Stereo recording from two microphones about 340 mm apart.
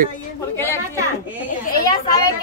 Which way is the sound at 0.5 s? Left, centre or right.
Centre.